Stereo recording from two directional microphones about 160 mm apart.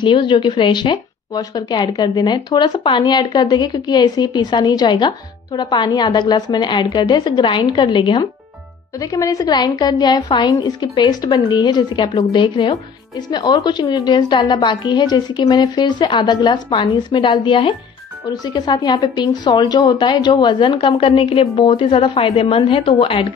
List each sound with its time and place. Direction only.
0.0 s a woman's voice: 30° left (ahead or behind)